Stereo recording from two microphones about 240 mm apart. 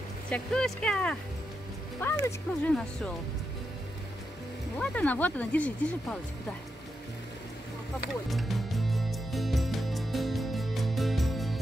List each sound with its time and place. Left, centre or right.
0.3 s speech: centre
4.7 s speech: centre
8.3 s music: centre